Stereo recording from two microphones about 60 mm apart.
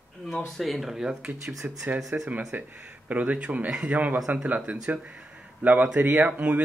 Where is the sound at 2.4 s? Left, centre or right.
Right.